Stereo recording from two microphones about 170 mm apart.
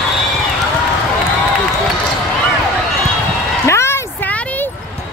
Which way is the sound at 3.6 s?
15° left (ahead or behind).